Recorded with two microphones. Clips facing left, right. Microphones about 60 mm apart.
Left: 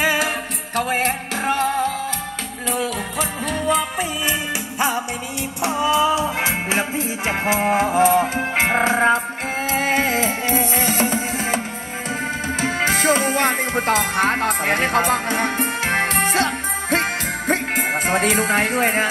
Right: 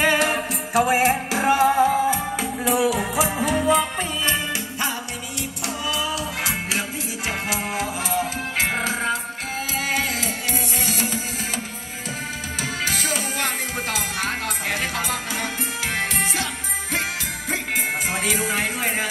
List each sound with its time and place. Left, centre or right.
0.0 s music: centre
4.3 s music: left
12.6 s music: left